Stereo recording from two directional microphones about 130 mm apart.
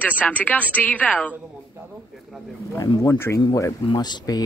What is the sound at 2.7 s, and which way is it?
Speech, 25° left (ahead or behind).